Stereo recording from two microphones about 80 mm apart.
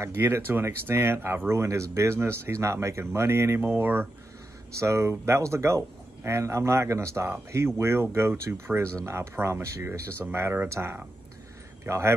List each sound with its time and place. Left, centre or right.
0.0 s speech: right
4.7 s speech: right